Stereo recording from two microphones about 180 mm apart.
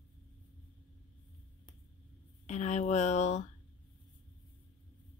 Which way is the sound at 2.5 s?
40° left (ahead or behind).